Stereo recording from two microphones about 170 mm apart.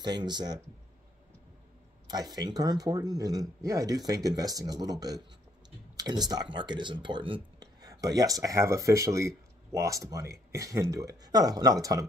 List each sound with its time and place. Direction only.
0.0 s speech: 25° right (ahead or behind)
2.0 s speech: 25° right (ahead or behind)
5.9 s speech: 25° right (ahead or behind)